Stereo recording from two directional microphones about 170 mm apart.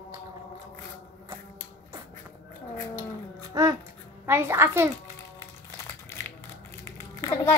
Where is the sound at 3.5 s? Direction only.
20° right (ahead or behind).